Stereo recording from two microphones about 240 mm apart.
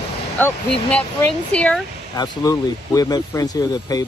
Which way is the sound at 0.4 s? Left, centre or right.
Centre.